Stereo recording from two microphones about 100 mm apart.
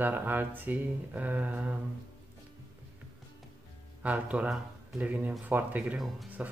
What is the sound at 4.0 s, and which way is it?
Speech, 15° right (ahead or behind).